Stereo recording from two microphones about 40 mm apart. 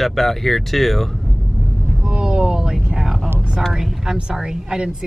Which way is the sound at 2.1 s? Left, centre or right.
Right.